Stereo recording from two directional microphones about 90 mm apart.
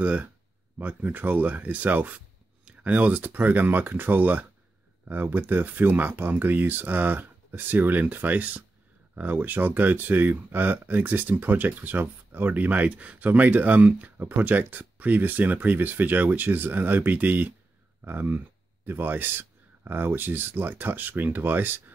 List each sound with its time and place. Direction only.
0.0 s speech: 15° right (ahead or behind)